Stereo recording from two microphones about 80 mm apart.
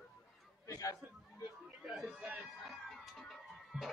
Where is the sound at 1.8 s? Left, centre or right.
Centre.